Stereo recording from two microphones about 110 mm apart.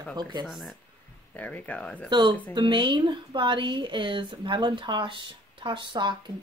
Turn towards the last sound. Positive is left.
turn(degrees=-45)  # may be behind; listen again after turning